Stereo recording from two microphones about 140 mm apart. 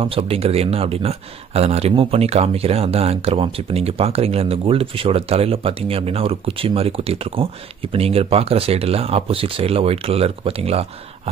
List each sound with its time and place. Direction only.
0.0 s speech: 40° right (ahead or behind)